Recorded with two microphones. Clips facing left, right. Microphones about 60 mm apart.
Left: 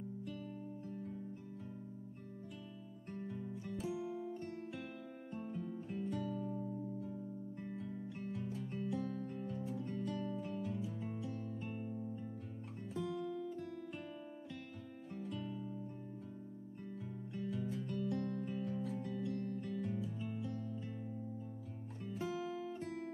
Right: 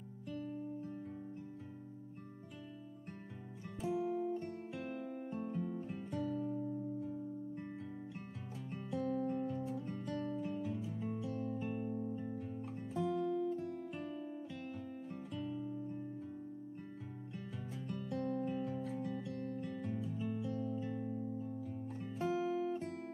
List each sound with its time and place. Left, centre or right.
3.8 s music: centre
6.5 s music: centre
8.3 s music: centre
13.0 s guitar: centre
17.4 s music: centre
20.5 s music: centre
20.8 s music: centre